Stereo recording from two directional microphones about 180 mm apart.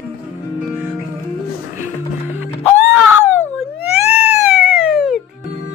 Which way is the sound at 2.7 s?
10° right (ahead or behind).